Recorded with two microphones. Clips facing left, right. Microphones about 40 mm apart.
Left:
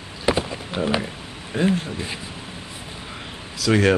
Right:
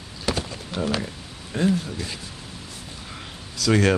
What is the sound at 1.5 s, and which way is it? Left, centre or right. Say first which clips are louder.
Speech: left 2 dB; centre.